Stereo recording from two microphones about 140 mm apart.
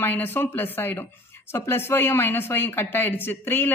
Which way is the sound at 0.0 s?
15° left (ahead or behind).